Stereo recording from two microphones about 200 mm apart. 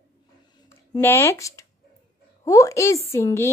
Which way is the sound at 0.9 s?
15° left (ahead or behind).